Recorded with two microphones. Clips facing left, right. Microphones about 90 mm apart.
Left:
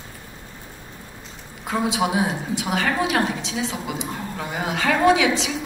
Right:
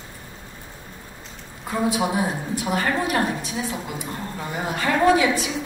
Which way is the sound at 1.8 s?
90° left.